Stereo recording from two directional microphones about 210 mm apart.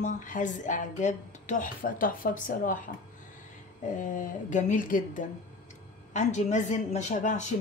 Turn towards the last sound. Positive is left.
turn(degrees=35)  # may be behind; listen again after turning